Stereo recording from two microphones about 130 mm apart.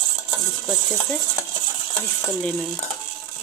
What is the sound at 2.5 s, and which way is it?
Speech, 5° left (ahead or behind).